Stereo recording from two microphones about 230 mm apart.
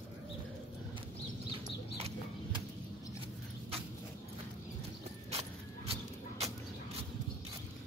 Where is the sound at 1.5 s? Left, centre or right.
Right.